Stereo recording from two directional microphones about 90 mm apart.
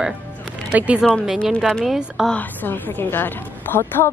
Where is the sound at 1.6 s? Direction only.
Centre (ahead or behind).